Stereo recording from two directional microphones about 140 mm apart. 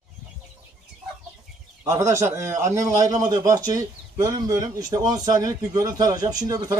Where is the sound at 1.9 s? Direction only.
20° right (ahead or behind).